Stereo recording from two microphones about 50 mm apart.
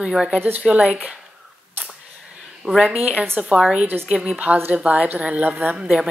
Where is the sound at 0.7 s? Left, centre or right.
Right.